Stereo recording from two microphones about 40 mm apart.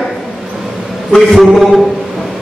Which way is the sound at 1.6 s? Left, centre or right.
Centre.